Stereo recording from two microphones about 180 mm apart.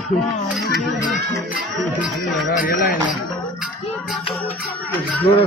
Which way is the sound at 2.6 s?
50° left (ahead or behind).